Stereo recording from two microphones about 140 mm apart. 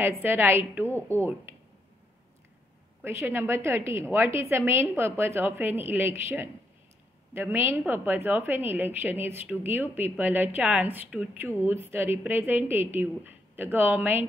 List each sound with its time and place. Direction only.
0.2 s a woman's voice: 15° right (ahead or behind)
3.0 s a woman's voice: 15° right (ahead or behind)